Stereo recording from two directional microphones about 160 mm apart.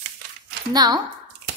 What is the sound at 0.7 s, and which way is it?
Speech, 25° right (ahead or behind).